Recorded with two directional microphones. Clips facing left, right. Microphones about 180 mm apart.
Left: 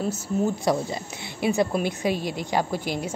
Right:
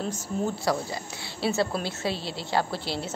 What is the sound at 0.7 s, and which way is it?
A woman's voice, 20° left (ahead or behind).